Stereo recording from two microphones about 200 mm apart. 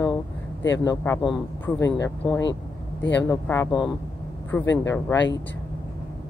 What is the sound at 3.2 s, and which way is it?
Speech, 10° left (ahead or behind).